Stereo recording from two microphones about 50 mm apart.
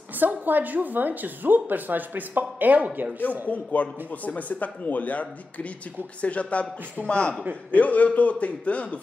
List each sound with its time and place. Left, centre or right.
0.1 s speech: right
3.4 s speech: left